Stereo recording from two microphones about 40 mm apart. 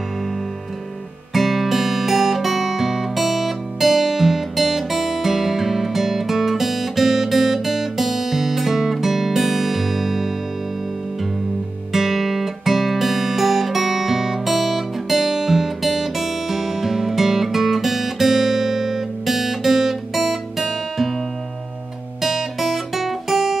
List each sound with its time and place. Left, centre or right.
1.3 s music: centre
11.9 s guitar: centre
22.2 s guitar: centre